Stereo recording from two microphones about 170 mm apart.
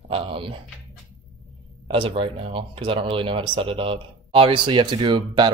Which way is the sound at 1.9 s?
30° right (ahead or behind).